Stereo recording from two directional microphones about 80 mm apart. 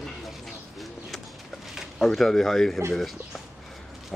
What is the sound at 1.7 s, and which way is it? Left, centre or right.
Speech, centre.